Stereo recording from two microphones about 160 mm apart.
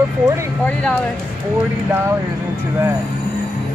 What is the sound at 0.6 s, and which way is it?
Speech, 10° left (ahead or behind).